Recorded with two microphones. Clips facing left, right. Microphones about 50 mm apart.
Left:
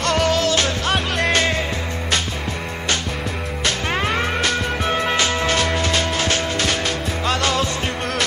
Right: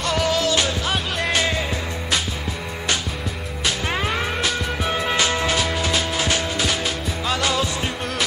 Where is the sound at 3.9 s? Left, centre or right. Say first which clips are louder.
Left 4 dB; centre.